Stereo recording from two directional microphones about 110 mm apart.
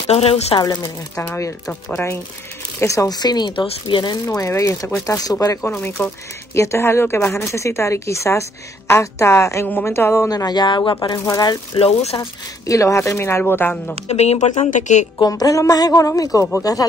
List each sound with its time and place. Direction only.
0.1 s a woman's voice: 70° left (ahead or behind)
1.1 s speech: 20° left (ahead or behind)
2.8 s speech: 30° left (ahead or behind)
4.4 s speech: 30° left (ahead or behind)
5.7 s speech: 15° left (ahead or behind)
10.3 s speech: 40° left (ahead or behind)
11.7 s speech: 65° left (ahead or behind)
12.2 s speech: 30° left (ahead or behind)
14.0 s speech: 80° left
15.1 s speech: 35° left (ahead or behind)